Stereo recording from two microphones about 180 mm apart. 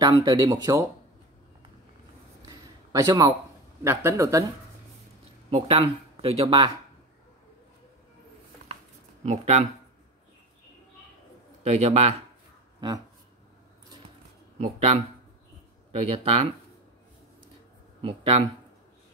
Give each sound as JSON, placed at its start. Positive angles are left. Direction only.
{"t": 0.0, "sound": "speech", "side_deg": -25}
{"t": 2.9, "sound": "speech", "side_deg": -20}
{"t": 5.5, "sound": "speech", "side_deg": -30}
{"t": 9.2, "sound": "speech", "side_deg": -40}
{"t": 11.6, "sound": "speech", "side_deg": -40}
{"t": 14.6, "sound": "speech", "side_deg": -35}
{"t": 16.1, "sound": "speech", "side_deg": -35}
{"t": 18.0, "sound": "speech", "side_deg": -30}